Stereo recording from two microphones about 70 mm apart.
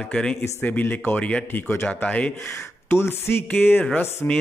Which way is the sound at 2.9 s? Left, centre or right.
Left.